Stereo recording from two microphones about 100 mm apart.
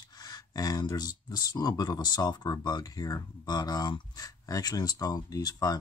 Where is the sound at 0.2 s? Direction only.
40° left (ahead or behind).